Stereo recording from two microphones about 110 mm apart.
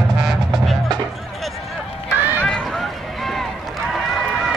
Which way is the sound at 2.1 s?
15° right (ahead or behind).